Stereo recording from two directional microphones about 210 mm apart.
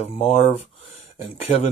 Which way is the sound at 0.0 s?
30° left (ahead or behind).